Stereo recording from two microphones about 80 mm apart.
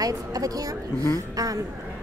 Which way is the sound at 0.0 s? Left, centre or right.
Right.